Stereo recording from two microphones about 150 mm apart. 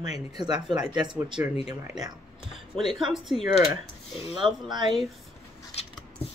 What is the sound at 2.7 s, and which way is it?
Speech, centre (ahead or behind).